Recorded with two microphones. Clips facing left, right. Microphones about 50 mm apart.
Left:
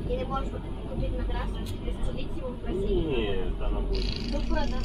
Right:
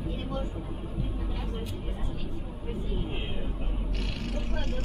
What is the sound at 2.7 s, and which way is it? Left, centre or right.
Speech, left.